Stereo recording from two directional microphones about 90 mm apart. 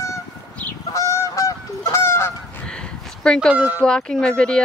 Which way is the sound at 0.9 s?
35° left (ahead or behind).